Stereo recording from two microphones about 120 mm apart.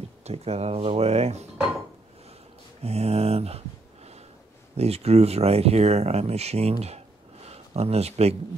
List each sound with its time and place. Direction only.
0.2 s speech: 60° right (ahead or behind)
2.8 s a sound: 60° right (ahead or behind)
4.7 s speech: 60° right (ahead or behind)